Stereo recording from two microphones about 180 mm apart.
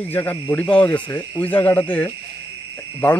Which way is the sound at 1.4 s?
10° left (ahead or behind).